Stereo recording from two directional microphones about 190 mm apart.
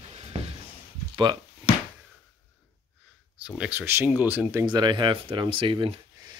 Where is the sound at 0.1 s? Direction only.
35° right (ahead or behind).